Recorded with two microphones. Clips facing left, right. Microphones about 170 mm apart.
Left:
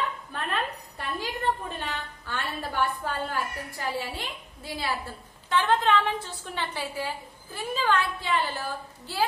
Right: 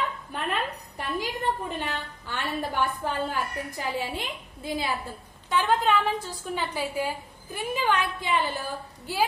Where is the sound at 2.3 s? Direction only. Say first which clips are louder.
Right 2 dB; 10° right (ahead or behind).